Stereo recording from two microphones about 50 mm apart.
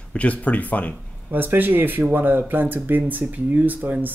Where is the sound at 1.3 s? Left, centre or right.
Right.